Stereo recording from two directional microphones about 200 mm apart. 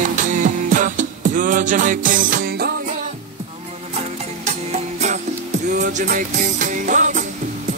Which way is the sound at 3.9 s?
35° right (ahead or behind).